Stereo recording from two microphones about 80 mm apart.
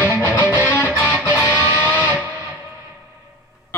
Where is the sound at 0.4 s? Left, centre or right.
Left.